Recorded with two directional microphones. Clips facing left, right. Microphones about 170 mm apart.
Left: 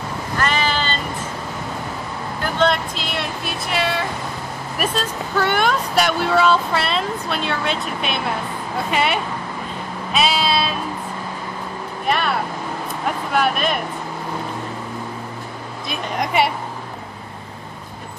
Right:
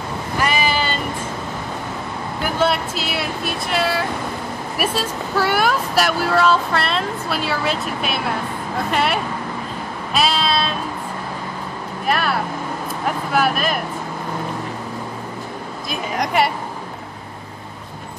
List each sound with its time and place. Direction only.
0.4 s a sound: 10° right (ahead or behind)
2.4 s speech: 5° right (ahead or behind)
12.1 s speech: centre (ahead or behind)
15.9 s speech: centre (ahead or behind)